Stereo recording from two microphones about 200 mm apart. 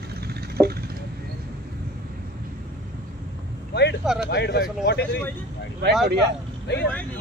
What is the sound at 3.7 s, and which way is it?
Vehicle, 55° left (ahead or behind).